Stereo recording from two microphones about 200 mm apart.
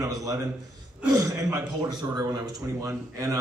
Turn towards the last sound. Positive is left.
turn(degrees=-15)  # may be behind; listen again after turning